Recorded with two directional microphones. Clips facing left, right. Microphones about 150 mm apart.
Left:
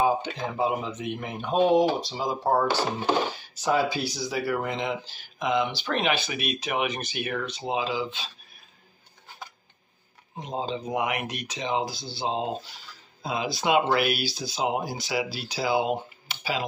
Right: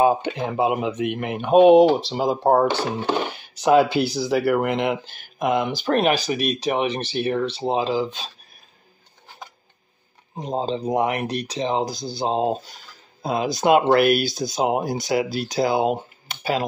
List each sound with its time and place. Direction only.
0.0 s speech: 60° right (ahead or behind); by 8.3 s 40° right (ahead or behind)
10.3 s speech: 35° right (ahead or behind)